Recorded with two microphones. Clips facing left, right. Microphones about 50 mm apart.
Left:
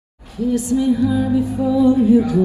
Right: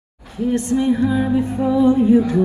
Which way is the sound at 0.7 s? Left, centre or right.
Right.